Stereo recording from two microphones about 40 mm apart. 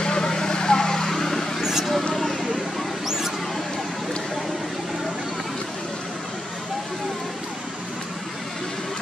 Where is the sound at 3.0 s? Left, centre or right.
Centre.